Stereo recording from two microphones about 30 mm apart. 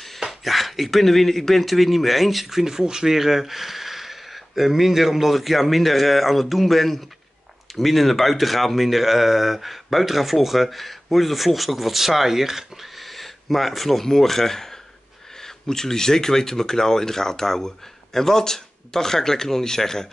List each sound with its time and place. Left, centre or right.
0.3 s speech: centre
2.6 s speech: right
3.1 s speech: centre
13.0 s a sound: centre
14.0 s speech: centre